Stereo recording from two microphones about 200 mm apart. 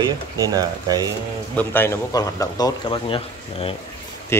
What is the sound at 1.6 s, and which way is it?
Speech, 10° left (ahead or behind).